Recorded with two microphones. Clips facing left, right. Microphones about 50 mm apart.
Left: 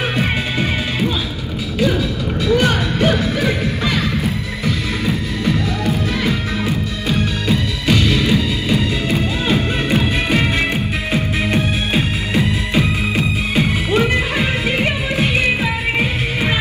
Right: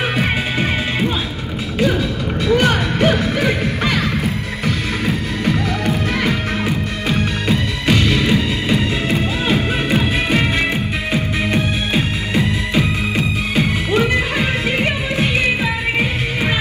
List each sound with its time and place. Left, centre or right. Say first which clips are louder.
2.5 s music: right 1 dB; right
5.0 s music: even; right
7.4 s music: right 1 dB; right
9.1 s music: even; centre
14.1 s music: even; centre